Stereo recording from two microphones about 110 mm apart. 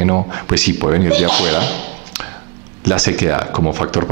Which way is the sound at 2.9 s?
20° right (ahead or behind).